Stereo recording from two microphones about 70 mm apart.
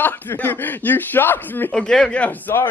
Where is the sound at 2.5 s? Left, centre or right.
Left.